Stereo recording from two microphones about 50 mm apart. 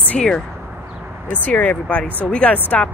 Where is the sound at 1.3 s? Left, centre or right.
Left.